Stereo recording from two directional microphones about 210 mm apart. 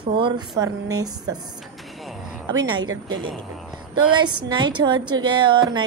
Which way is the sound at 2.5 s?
20° right (ahead or behind).